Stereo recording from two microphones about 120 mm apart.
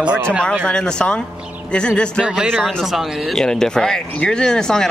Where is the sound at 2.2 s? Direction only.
5° right (ahead or behind).